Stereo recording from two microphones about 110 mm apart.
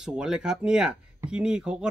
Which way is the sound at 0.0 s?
5° right (ahead or behind).